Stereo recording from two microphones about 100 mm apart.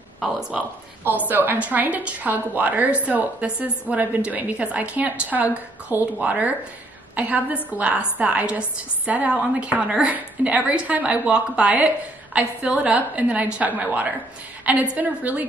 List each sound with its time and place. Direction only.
0.2 s speech: 5° right (ahead or behind)
1.0 s a woman's voice: 20° right (ahead or behind)